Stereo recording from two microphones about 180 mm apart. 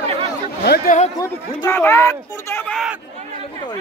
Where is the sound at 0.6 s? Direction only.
55° left (ahead or behind).